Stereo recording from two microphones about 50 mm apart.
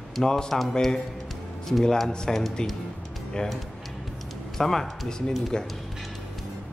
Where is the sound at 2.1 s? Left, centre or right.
Centre.